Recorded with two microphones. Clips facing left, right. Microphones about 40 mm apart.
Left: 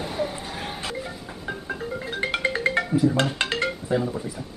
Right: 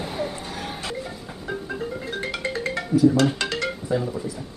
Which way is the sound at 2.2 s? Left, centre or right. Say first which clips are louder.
Left 5 dB; left.